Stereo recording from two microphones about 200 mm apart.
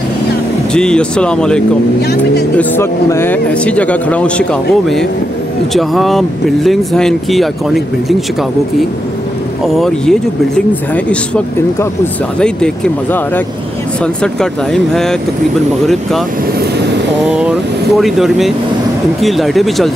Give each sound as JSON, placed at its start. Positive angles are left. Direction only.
{"t": 0.7, "sound": "speech", "side_deg": 5}
{"t": 2.0, "sound": "speech", "side_deg": 55}
{"t": 2.5, "sound": "speech", "side_deg": 10}
{"t": 17.2, "sound": "speech", "side_deg": -5}